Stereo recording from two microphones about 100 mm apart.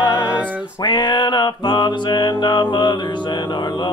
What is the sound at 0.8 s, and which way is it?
Mantra, 50° left (ahead or behind).